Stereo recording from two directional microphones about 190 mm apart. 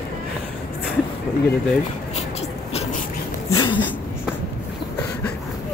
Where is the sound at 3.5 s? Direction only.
25° left (ahead or behind).